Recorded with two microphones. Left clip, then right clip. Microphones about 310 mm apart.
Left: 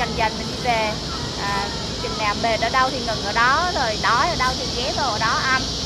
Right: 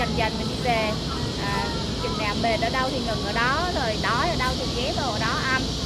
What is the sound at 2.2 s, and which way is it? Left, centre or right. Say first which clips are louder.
Speech: left 4 dB; centre.